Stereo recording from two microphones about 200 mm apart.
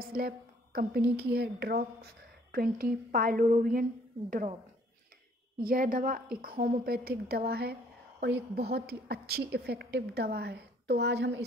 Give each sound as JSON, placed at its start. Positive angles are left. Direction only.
{"t": 0.0, "sound": "a woman's voice", "side_deg": -50}
{"t": 5.6, "sound": "a woman's voice", "side_deg": -45}